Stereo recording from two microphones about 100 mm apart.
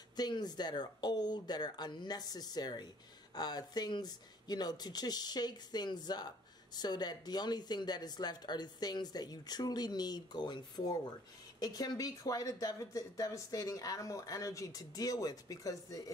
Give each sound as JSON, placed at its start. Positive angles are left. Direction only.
{"t": 0.1, "sound": "speech", "side_deg": 45}